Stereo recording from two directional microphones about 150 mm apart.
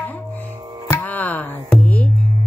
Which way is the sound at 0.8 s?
15° left (ahead or behind).